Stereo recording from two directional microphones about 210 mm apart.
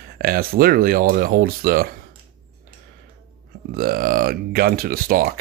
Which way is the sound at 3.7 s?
45° right (ahead or behind).